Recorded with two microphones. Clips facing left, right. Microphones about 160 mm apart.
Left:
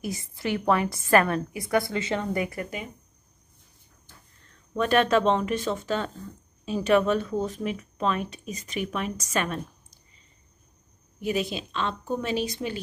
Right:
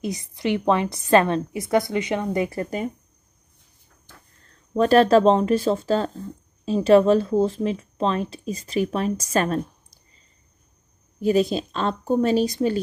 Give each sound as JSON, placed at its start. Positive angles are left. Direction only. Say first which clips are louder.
{"t": 0.0, "sound": "a woman's voice", "louder": "right 5 dB", "side_deg": -20}
{"t": 4.7, "sound": "speech", "louder": "right 6 dB", "side_deg": -35}
{"t": 11.1, "sound": "speech", "louder": "right 8 dB", "side_deg": -40}